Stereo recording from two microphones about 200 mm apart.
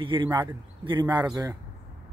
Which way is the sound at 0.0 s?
25° right (ahead or behind).